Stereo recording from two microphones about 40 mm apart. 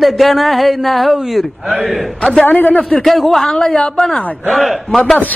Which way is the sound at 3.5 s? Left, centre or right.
Centre.